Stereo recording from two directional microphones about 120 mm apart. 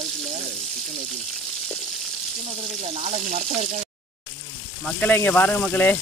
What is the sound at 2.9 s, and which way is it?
Frying, 80° right.